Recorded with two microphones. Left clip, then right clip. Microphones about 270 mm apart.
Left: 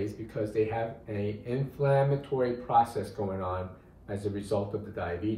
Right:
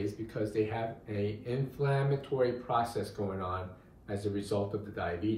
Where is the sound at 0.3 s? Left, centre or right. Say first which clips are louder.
Left 4 dB; centre.